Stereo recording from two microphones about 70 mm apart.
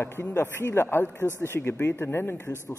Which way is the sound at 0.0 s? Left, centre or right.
Left.